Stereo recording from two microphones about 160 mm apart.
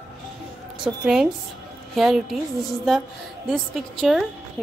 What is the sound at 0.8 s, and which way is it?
A woman's voice, 5° right (ahead or behind).